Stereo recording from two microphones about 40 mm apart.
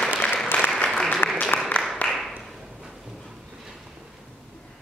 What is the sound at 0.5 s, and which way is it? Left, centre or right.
Applause, left.